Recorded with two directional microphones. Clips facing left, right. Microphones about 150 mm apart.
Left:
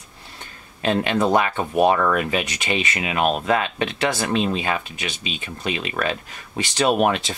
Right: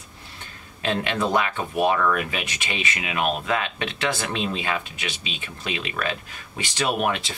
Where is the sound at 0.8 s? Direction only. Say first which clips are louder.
Left 5 dB; 40° left (ahead or behind).